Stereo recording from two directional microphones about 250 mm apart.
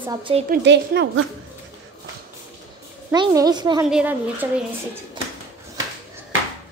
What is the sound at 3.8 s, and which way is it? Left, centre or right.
Speech, centre.